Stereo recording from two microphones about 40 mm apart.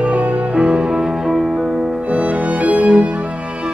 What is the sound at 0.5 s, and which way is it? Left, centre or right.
Music, right.